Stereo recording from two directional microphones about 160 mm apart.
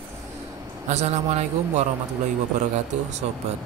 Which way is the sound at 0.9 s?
45° right (ahead or behind).